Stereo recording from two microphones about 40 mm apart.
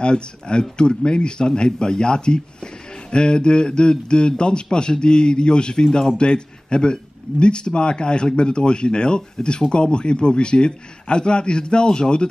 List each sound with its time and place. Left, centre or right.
0.0 s speech: left